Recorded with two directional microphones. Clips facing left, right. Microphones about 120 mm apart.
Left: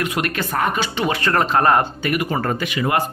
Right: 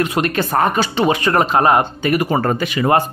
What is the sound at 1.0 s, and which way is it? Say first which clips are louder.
Speech: right 3 dB; 15° right (ahead or behind).